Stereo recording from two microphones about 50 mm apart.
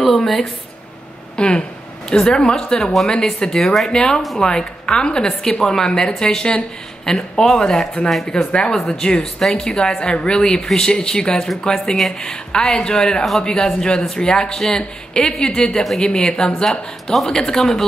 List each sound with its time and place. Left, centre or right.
0.0 s a sound: centre
1.3 s a woman's voice: left
17.1 s a woman's voice: centre